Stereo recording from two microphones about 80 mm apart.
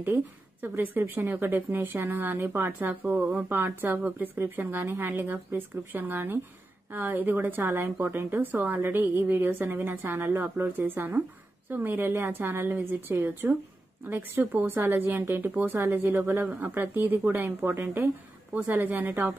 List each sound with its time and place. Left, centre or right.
0.0 s a woman's voice: right
7.6 s a woman's voice: right
17.4 s speech: right
17.8 s a woman's voice: right